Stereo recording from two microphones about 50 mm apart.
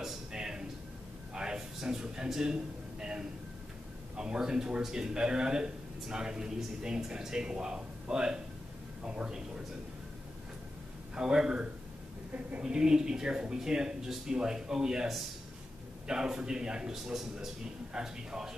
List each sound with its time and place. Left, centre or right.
0.0 s a sound: centre
4.2 s a man's voice: centre
11.1 s speech: centre